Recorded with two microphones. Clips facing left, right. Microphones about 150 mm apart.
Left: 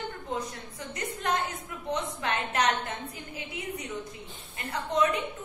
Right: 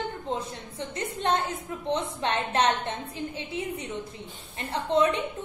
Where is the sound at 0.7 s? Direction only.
25° right (ahead or behind).